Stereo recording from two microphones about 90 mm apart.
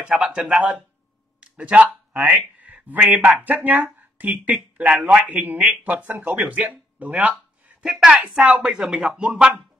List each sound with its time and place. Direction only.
0.1 s speech: 10° right (ahead or behind)
1.4 s a sound: 15° right (ahead or behind)
2.2 s speech: 15° right (ahead or behind)